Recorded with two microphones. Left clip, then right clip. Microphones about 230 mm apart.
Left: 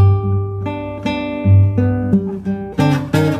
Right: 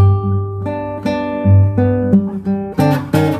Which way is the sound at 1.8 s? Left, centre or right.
Centre.